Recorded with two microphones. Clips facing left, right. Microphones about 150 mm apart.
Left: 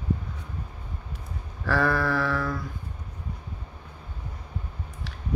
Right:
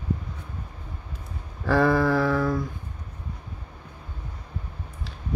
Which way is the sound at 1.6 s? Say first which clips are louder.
Right 4 dB; 15° right (ahead or behind).